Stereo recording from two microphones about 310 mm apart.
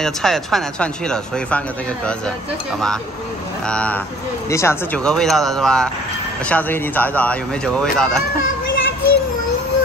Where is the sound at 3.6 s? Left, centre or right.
Centre.